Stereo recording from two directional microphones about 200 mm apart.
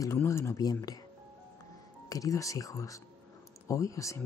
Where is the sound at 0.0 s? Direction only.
15° left (ahead or behind).